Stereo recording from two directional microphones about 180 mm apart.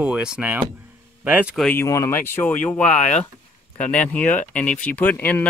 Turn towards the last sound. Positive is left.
turn(degrees=10)  # may be behind; listen again after turning